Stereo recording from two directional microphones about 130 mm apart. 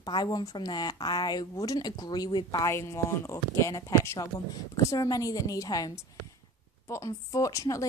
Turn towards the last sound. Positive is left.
turn(degrees=25)  # may be behind; listen again after turning